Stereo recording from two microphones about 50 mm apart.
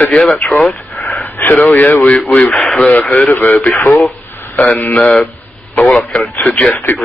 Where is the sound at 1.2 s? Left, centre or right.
Left.